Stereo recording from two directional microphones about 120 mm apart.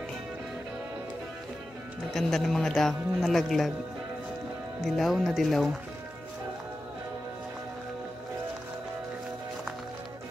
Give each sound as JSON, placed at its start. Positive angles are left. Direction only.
{"t": 2.1, "sound": "speech", "side_deg": 0}
{"t": 4.8, "sound": "speech", "side_deg": 0}